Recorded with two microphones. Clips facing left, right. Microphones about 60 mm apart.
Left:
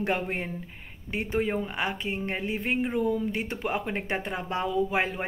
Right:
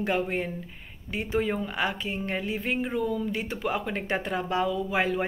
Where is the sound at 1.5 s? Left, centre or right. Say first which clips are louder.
Right 1 dB; left.